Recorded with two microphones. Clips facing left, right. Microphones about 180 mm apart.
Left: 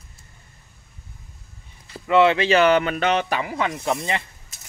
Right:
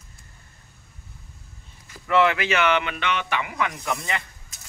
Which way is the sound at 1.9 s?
25° left (ahead or behind).